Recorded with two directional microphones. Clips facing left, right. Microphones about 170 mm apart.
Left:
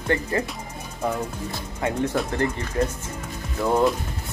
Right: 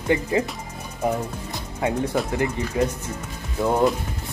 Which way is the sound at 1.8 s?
10° right (ahead or behind).